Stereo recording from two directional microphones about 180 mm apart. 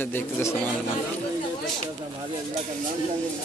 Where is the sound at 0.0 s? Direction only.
15° left (ahead or behind).